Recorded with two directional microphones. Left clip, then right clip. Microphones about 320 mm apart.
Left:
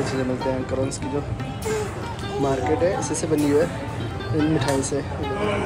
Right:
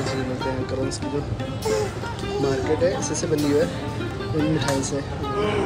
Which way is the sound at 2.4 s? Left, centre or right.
Centre.